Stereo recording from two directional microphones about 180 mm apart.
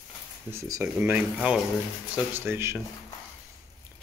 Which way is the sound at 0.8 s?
5° right (ahead or behind).